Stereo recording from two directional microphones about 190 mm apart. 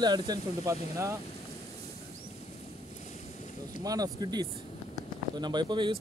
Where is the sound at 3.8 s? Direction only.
20° right (ahead or behind).